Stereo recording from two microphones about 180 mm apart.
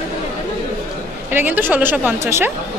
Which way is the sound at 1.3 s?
10° right (ahead or behind).